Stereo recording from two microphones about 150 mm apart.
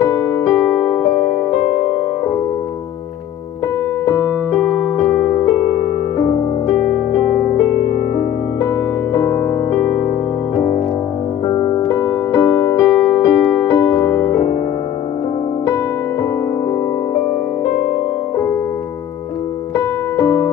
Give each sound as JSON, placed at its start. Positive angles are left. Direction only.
{"t": 0.0, "sound": "music", "side_deg": 20}
{"t": 4.0, "sound": "keyboard", "side_deg": 20}
{"t": 5.3, "sound": "electric piano", "side_deg": 20}
{"t": 6.1, "sound": "music", "side_deg": 20}
{"t": 9.1, "sound": "music", "side_deg": 20}
{"t": 11.5, "sound": "music", "side_deg": 30}
{"t": 20.2, "sound": "music", "side_deg": 20}